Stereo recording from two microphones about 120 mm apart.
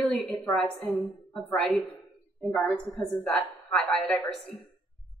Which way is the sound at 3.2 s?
5° left (ahead or behind).